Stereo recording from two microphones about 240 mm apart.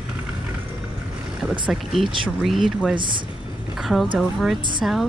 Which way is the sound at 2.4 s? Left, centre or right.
Centre.